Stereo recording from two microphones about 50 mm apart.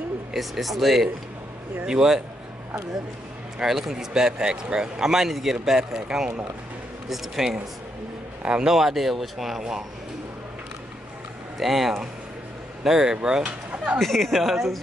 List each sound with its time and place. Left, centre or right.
0.3 s speech: centre
3.5 s speech: centre
7.1 s speech: centre
8.4 s speech: centre
11.5 s speech: centre; by 13.9 s right
13.9 s speech: centre